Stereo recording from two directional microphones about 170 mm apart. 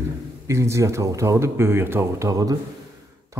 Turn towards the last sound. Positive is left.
turn(degrees=-20)  # may be behind; listen again after turning